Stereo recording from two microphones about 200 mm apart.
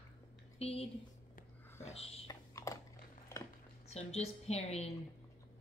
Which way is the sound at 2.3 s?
15° left (ahead or behind).